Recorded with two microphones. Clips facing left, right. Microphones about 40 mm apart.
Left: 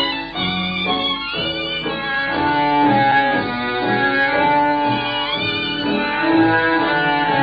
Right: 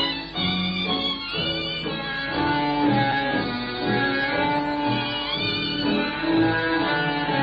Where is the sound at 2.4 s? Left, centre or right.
Left.